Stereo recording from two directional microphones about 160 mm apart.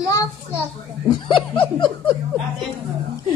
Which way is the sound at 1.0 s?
30° left (ahead or behind).